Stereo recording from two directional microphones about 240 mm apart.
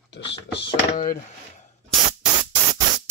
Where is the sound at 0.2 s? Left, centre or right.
Left.